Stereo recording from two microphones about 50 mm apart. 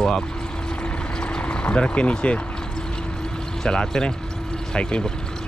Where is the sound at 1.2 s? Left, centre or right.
Left.